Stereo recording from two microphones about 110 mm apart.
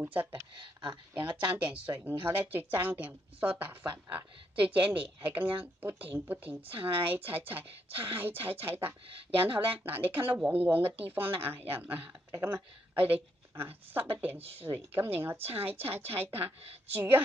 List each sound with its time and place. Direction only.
0.0 s a woman's voice: 15° right (ahead or behind)
0.6 s speech: 45° right (ahead or behind)
1.4 s a woman's voice: 15° right (ahead or behind)
6.8 s speech: 55° right (ahead or behind)
7.2 s a woman's voice: 15° right (ahead or behind)
9.1 s speech: 55° right (ahead or behind)
9.8 s a woman's voice: 15° right (ahead or behind)
14.1 s a woman's voice: 15° right (ahead or behind)